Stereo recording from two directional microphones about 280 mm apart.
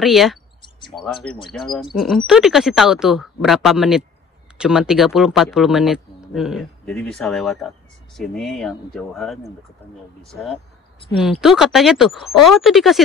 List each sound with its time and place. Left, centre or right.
0.0 s speech: centre
0.6 s a sound: centre
0.9 s speech: centre